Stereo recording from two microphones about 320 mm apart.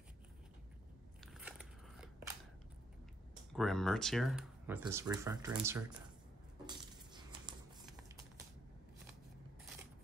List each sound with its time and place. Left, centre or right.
1.2 s biting: centre
3.5 s speech: centre
6.6 s a sound: centre